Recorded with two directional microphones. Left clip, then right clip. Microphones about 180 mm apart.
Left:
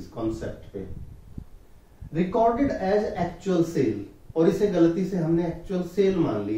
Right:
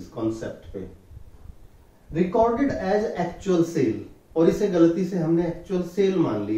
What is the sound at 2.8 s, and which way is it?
Speech, centre (ahead or behind).